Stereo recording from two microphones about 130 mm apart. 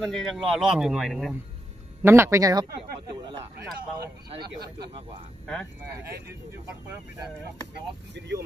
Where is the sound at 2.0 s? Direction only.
20° right (ahead or behind).